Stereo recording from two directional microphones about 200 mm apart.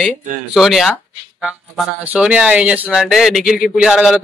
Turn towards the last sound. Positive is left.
turn(degrees=-5)  # may be behind; listen again after turning